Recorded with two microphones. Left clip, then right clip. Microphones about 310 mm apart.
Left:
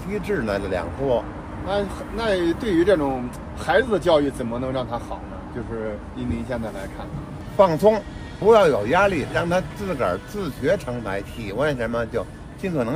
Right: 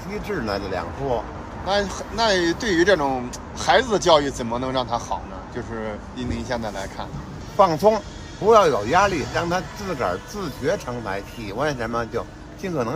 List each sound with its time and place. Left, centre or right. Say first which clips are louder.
0.3 s speech: left 2 dB; centre
1.7 s speech: right 2 dB; right
6.5 s speech: right 2 dB; right
7.5 s speech: even; centre